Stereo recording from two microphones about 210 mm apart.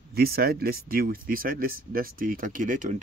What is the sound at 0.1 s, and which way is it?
Speech, 45° right (ahead or behind).